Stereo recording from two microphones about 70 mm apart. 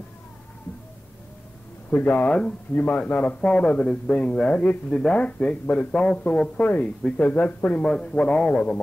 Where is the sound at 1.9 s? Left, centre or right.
Left.